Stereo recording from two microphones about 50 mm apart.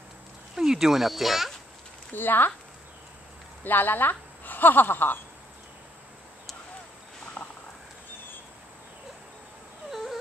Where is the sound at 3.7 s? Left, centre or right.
Left.